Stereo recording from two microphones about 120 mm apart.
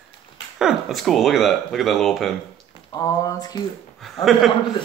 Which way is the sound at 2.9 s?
30° left (ahead or behind).